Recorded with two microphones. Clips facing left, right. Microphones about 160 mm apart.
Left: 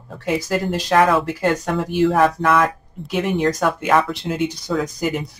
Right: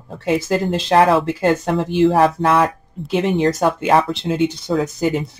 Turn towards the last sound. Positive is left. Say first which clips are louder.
# right 4 dB
turn(degrees=-25)  # may be behind; listen again after turning